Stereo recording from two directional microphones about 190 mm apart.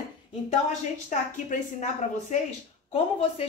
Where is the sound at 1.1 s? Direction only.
40° left (ahead or behind).